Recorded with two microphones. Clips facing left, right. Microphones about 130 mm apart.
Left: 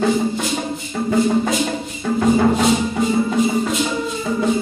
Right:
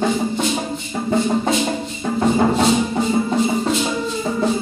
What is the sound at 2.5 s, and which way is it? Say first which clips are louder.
Music: even; 30° right (ahead or behind).